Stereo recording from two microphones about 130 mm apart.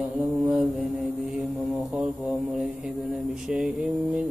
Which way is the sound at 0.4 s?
5° right (ahead or behind).